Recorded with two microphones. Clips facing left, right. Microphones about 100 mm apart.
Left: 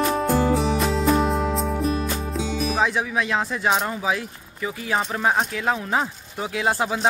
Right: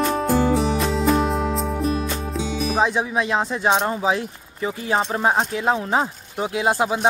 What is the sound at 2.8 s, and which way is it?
Speech, 20° right (ahead or behind).